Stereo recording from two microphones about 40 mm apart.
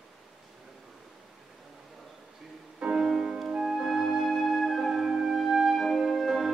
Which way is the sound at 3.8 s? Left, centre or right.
Centre.